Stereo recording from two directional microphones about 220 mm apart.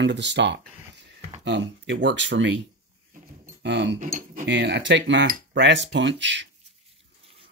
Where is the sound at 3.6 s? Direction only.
50° right (ahead or behind).